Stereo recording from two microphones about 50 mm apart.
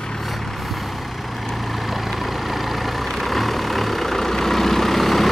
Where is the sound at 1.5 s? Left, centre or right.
Centre.